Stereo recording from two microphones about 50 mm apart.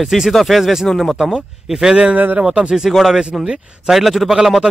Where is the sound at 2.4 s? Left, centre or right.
Centre.